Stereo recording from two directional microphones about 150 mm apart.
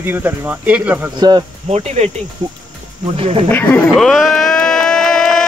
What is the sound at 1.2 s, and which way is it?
Speech, 30° right (ahead or behind).